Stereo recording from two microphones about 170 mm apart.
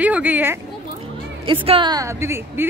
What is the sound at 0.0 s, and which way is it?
Speech, 10° right (ahead or behind).